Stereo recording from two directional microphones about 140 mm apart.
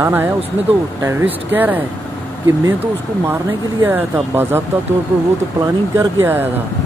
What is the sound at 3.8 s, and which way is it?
Speech, 15° right (ahead or behind).